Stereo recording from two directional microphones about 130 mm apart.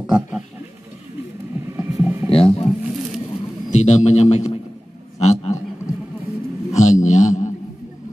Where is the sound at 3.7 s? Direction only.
65° left (ahead or behind).